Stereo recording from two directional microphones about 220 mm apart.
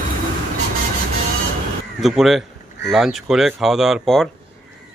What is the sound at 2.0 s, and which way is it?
Speech, centre (ahead or behind).